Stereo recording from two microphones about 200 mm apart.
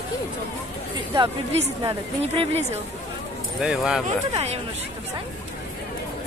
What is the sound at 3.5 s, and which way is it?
Speech, centre (ahead or behind).